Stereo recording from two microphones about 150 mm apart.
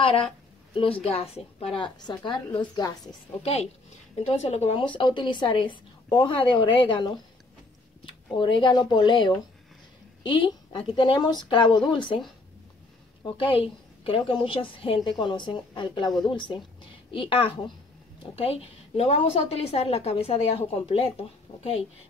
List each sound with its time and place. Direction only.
0.0 s a woman's voice: 40° left (ahead or behind)
2.0 s a woman's voice: 30° left (ahead or behind)
4.2 s a woman's voice: 45° left (ahead or behind)
8.4 s a woman's voice: 35° left (ahead or behind)
13.2 s a woman's voice: 35° left (ahead or behind)